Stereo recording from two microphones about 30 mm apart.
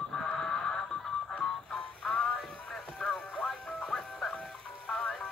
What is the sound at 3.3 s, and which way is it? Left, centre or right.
Music, left.